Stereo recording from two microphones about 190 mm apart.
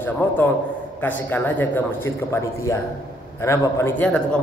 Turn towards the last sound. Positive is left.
turn(degrees=5)  # may be behind; listen again after turning